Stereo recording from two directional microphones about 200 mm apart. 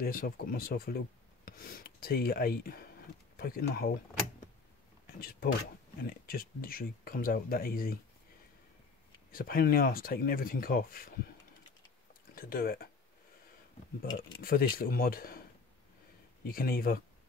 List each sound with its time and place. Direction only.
0.0 s speech: 45° left (ahead or behind)
5.0 s speech: 45° left (ahead or behind)
9.3 s speech: 45° left (ahead or behind)
12.4 s speech: 45° left (ahead or behind)
14.4 s speech: 45° left (ahead or behind)
16.4 s speech: 50° left (ahead or behind)